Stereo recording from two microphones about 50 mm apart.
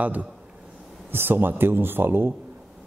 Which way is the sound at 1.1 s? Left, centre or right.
Right.